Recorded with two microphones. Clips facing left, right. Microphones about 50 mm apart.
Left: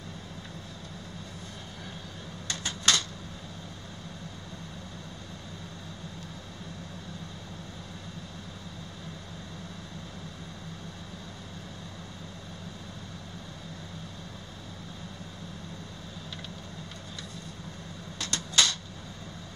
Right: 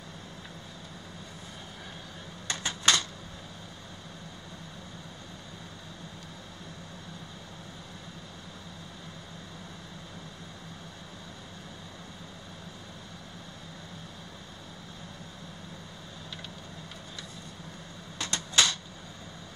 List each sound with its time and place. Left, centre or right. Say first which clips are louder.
2.6 s typewriter: right 1 dB; right
18.2 s typewriter: even; centre